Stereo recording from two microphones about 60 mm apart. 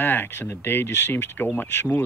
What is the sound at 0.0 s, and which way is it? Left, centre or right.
Speech, left.